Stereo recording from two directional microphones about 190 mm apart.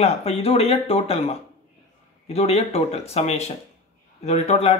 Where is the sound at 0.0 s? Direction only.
35° left (ahead or behind).